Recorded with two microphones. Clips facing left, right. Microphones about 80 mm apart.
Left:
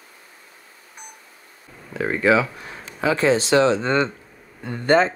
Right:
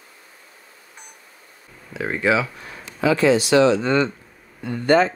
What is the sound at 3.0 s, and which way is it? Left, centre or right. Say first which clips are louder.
Speech: right 2 dB; left.